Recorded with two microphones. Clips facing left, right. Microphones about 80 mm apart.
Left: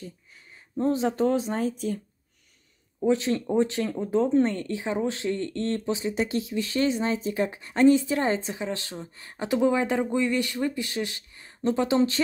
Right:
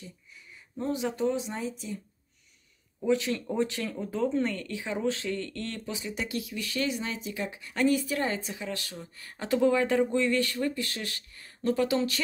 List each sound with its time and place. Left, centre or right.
0.0 s speech: left
3.0 s speech: left